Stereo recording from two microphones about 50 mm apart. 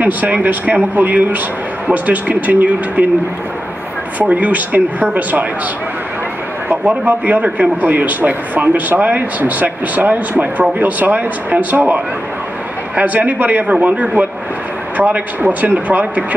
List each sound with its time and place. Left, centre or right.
0.0 s speech: right
4.2 s speech: right
6.9 s speech: right
12.9 s speech: right